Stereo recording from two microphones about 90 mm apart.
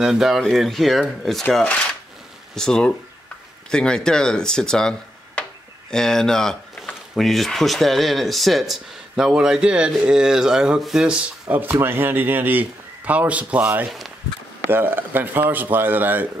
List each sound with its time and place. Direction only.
0.0 s speech: 5° right (ahead or behind)
11.1 s a man's voice: 15° right (ahead or behind)
13.8 s speech: centre (ahead or behind)
14.7 s a man's voice: 25° right (ahead or behind)